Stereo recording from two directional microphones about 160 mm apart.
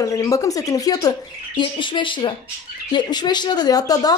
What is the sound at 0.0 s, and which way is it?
Speech, 20° left (ahead or behind).